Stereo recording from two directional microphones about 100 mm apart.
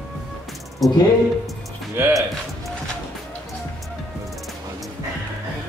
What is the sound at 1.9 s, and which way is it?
Music, 25° right (ahead or behind).